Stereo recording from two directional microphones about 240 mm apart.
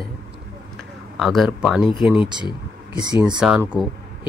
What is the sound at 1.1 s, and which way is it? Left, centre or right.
Speech, centre.